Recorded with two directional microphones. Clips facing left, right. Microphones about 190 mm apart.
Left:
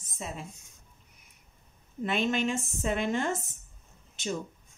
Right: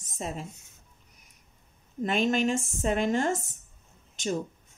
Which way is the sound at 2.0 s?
45° right (ahead or behind).